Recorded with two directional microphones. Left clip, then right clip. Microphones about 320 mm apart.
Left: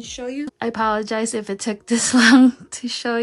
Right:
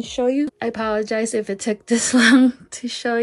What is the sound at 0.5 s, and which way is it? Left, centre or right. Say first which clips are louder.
A woman's voice: left 2 dB; centre.